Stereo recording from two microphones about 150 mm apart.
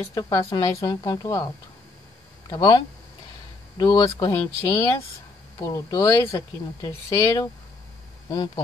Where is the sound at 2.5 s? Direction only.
25° left (ahead or behind).